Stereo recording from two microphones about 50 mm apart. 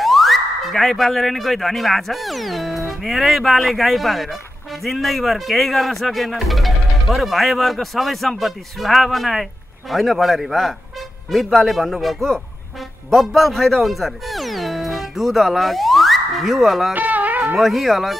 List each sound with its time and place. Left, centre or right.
0.0 s speech: centre
16.9 s music: right
17.6 s speech: centre